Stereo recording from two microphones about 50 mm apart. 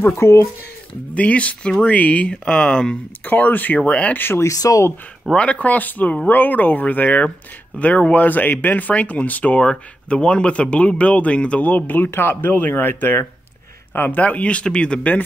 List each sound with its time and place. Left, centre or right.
0.0 s speech: left
1.1 s speech: left
2.2 s speech: centre
3.3 s speech: left
4.4 s speech: left
5.3 s speech: left
9.6 s speech: centre; by 12.1 s left
12.1 s speech: left
14.2 s speech: left